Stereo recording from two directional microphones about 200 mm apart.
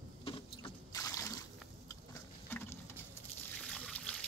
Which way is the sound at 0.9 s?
15° left (ahead or behind).